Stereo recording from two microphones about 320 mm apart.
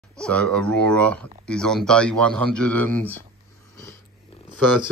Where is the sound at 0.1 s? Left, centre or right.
Centre.